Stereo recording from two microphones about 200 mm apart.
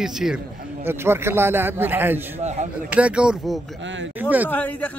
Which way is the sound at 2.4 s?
35° right (ahead or behind).